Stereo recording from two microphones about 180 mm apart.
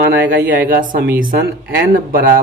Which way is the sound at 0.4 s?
50° right (ahead or behind).